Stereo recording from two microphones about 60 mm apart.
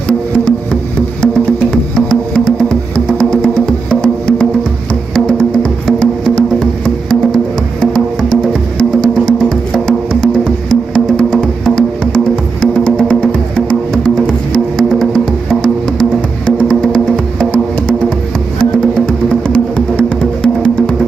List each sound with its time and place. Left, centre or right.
1.2 s music: centre
13.9 s music: centre